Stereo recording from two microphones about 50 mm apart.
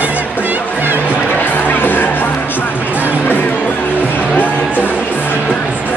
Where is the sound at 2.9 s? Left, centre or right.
Right.